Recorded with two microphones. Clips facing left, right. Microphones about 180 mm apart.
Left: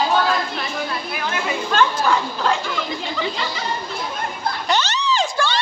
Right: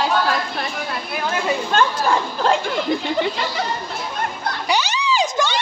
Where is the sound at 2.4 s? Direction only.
50° right (ahead or behind).